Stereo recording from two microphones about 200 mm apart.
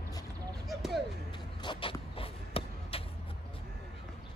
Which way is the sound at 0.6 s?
Centre (ahead or behind).